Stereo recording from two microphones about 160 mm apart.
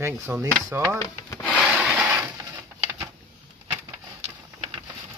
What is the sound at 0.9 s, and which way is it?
Rub, 15° left (ahead or behind).